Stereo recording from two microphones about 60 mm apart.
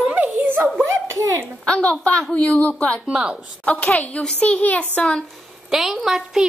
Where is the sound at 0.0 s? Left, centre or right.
Right.